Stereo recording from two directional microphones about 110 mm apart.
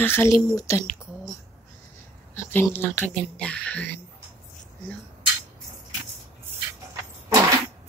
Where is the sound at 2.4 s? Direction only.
20° left (ahead or behind).